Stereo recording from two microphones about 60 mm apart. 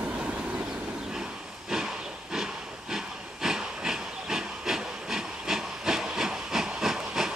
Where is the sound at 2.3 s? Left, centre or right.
Centre.